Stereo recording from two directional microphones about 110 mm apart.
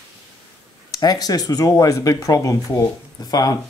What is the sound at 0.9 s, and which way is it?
Speech, 35° left (ahead or behind).